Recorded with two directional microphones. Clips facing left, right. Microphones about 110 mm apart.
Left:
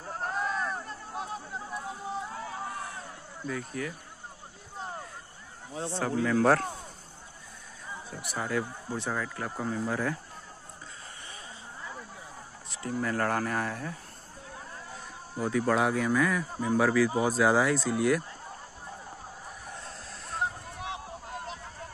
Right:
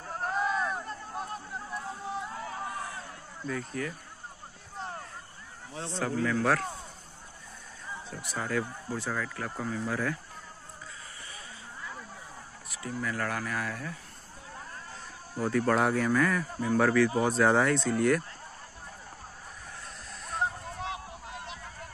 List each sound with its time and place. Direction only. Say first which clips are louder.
0.1 s a sound: right 2 dB; centre (ahead or behind)
3.4 s speech: even; 5° left (ahead or behind)
4.7 s a sound: even; 5° left (ahead or behind)
5.8 s speech: left 1 dB; 15° left (ahead or behind)
6.3 s speech: left 6 dB; 30° left (ahead or behind)
7.9 s speech: even; 15° left (ahead or behind)
12.6 s speech: left 3 dB; 30° left (ahead or behind)
14.9 s speech: left 2 dB; 5° left (ahead or behind)
21.3 s a sound: left 3 dB; 40° left (ahead or behind)